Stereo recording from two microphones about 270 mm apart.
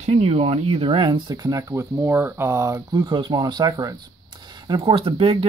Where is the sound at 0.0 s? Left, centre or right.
Right.